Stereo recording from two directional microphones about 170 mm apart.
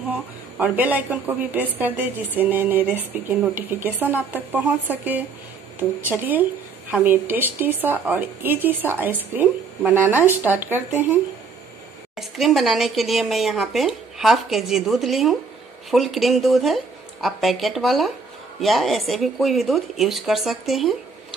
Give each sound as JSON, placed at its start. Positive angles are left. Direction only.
{"t": 0.1, "sound": "a woman's voice", "side_deg": -10}
{"t": 12.2, "sound": "a woman's voice", "side_deg": 0}